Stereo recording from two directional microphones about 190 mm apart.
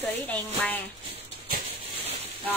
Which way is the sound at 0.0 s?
10° left (ahead or behind).